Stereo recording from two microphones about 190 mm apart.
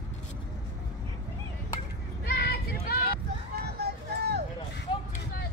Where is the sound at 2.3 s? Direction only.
55° left (ahead or behind).